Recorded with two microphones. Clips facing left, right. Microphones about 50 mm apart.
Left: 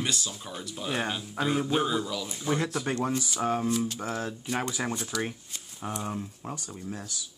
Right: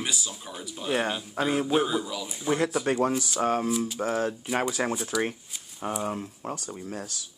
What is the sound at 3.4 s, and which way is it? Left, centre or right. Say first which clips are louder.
Speech: right 2 dB; right.